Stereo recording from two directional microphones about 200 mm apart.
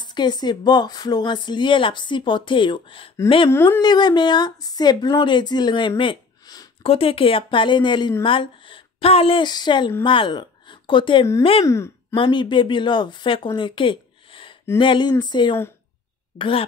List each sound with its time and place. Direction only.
0.0 s a woman's voice: 20° left (ahead or behind)
3.4 s a woman's voice: 10° left (ahead or behind)
6.8 s a woman's voice: 30° left (ahead or behind)
11.6 s speech: 15° left (ahead or behind)
12.2 s a woman's voice: 25° left (ahead or behind)
13.6 s a sound: 25° left (ahead or behind)
14.8 s a woman's voice: 25° left (ahead or behind)